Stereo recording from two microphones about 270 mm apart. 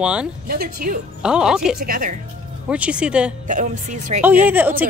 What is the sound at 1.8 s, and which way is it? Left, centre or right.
Speech, right.